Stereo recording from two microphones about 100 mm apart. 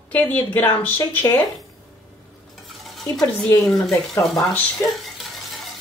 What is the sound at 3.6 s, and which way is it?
Speech, 5° left (ahead or behind).